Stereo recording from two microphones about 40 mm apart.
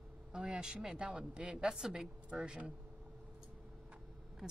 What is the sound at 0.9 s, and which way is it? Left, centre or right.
Speech, right.